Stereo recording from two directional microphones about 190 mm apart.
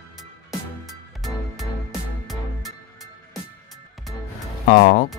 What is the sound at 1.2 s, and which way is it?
Music, centre (ahead or behind).